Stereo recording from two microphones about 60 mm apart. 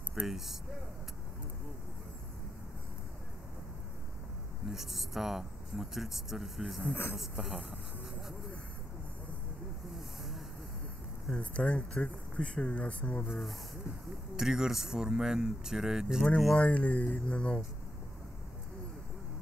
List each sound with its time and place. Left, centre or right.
0.1 s speech: centre
4.6 s speech: centre
11.3 s speech: centre
13.3 s speech: centre
14.3 s speech: centre
16.5 s speech: left